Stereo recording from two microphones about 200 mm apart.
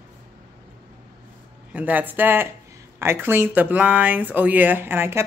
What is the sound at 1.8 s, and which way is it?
Speech, 10° right (ahead or behind).